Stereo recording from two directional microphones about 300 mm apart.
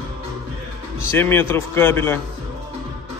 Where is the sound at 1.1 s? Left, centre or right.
Centre.